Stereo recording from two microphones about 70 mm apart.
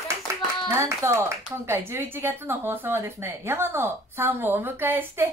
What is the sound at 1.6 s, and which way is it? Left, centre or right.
Speech, right.